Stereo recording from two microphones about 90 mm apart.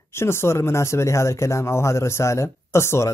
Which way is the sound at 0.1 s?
30° left (ahead or behind).